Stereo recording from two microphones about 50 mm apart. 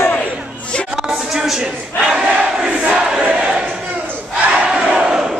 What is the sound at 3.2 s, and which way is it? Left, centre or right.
Battle cry, centre.